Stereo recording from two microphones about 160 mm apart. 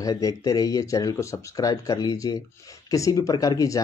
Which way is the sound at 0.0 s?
20° left (ahead or behind).